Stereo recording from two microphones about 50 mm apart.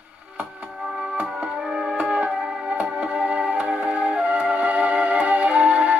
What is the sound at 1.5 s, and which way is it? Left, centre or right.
Music, centre.